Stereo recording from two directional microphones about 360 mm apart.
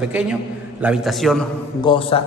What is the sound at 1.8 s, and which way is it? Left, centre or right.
Speech, centre.